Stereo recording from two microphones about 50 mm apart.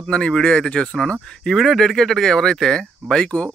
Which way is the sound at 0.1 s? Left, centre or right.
Centre.